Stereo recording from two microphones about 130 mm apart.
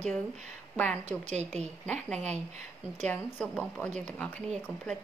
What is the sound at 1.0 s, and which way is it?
Speech, 60° right (ahead or behind).